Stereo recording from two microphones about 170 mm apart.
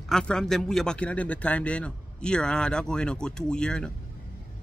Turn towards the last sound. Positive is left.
turn(degrees=5)  # may be behind; listen again after turning